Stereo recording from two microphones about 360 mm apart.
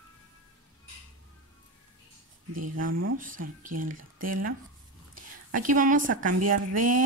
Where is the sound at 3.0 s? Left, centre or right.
Right.